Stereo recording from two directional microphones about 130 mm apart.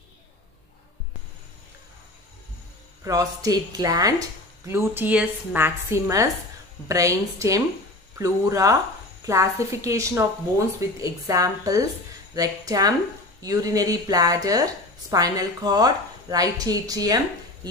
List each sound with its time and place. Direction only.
3.0 s a woman's voice: 30° right (ahead or behind)
4.6 s a woman's voice: 20° right (ahead or behind)